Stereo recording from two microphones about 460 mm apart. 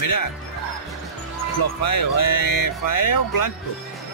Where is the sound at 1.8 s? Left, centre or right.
Left.